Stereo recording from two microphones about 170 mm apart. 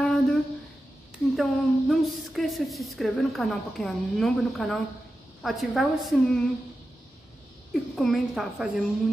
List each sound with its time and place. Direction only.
0.0 s a sound: 5° left (ahead or behind)
1.3 s a woman's voice: centre (ahead or behind)
7.7 s a woman's voice: centre (ahead or behind)